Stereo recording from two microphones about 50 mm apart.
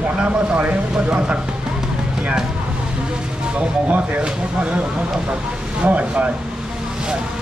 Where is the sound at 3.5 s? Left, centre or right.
Right.